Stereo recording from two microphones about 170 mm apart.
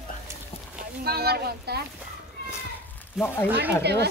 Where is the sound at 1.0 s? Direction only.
70° right (ahead or behind).